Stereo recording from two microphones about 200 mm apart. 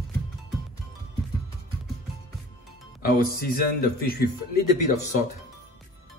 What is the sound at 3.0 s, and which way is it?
Speech, 45° left (ahead or behind).